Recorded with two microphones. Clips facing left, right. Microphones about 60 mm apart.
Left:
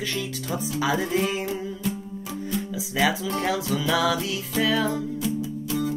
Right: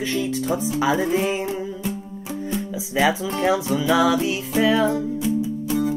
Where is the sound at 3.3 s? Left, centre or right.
Right.